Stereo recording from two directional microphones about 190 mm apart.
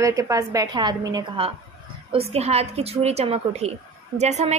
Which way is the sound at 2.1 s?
30° right (ahead or behind).